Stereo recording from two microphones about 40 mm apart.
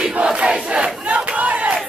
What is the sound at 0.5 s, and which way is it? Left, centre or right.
Crowd, right.